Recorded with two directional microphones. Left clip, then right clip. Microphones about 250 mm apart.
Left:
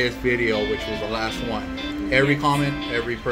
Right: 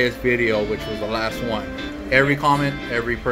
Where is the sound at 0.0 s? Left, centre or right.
Centre.